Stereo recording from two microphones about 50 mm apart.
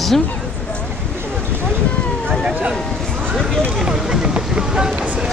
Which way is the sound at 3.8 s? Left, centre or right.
Centre.